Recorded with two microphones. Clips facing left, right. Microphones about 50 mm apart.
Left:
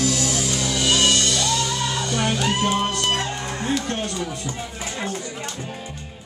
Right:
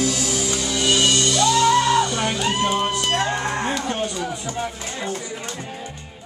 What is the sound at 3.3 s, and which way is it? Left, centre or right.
Music, right.